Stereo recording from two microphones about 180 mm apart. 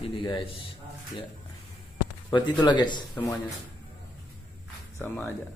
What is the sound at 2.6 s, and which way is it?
Speech, 25° left (ahead or behind).